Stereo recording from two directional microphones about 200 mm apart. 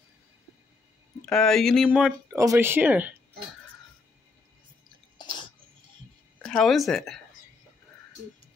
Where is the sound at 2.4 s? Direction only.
15° right (ahead or behind).